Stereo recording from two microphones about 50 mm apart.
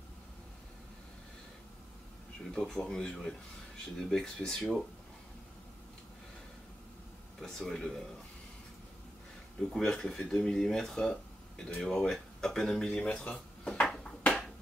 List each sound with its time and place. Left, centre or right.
2.5 s speech: centre
7.4 s speech: centre
9.6 s speech: centre
13.0 s speech: left